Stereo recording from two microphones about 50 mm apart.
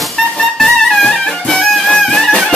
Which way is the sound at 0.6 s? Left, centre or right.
Centre.